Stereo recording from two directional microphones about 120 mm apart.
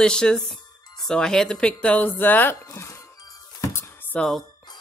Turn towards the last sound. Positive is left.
turn(degrees=5)  # may be behind; listen again after turning